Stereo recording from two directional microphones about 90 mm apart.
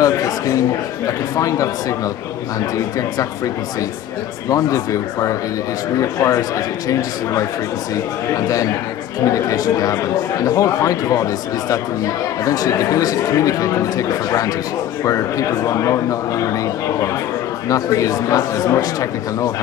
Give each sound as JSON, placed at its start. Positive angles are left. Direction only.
{"t": 0.0, "sound": "speech", "side_deg": 40}
{"t": 4.5, "sound": "speech", "side_deg": 40}
{"t": 8.4, "sound": "speech", "side_deg": 40}
{"t": 12.4, "sound": "speech", "side_deg": 40}
{"t": 17.6, "sound": "speech", "side_deg": 40}